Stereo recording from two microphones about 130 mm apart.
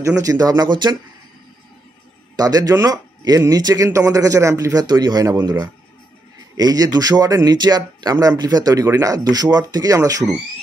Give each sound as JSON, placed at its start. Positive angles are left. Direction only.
{"t": 0.0, "sound": "speech", "side_deg": -25}
{"t": 2.3, "sound": "speech", "side_deg": -30}